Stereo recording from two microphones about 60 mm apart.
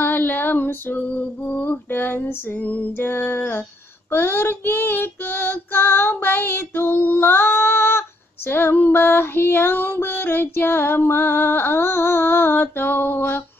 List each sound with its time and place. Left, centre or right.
0.0 s female singing: left
3.0 s music: left